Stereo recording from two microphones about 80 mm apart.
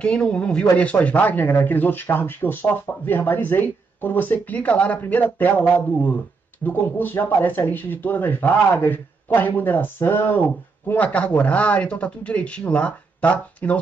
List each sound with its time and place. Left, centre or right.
0.0 s speech: centre